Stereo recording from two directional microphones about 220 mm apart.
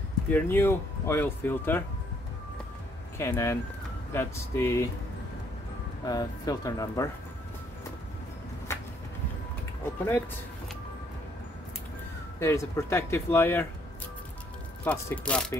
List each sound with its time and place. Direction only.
0.3 s speech: 10° left (ahead or behind)
3.2 s speech: 10° left (ahead or behind)
6.0 s speech: 15° left (ahead or behind)
8.7 s music: 10° left (ahead or behind)
12.4 s speech: 15° left (ahead or behind)
14.9 s speech: 5° left (ahead or behind)